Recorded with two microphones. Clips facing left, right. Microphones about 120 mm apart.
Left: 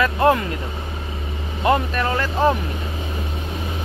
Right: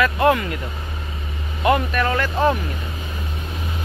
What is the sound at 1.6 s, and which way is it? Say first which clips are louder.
Speech: right 1 dB; 25° left (ahead or behind).